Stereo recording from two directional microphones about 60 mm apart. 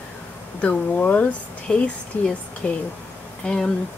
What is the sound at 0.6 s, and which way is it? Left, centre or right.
Speech, left.